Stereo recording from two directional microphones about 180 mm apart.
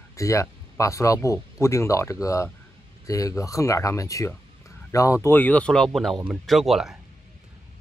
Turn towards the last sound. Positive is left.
turn(degrees=0)  # may be behind; listen again after turning